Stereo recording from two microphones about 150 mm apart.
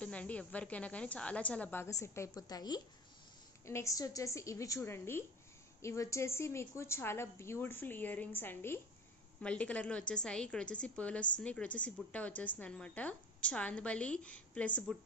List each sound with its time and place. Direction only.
0.0 s a woman's voice: 10° left (ahead or behind)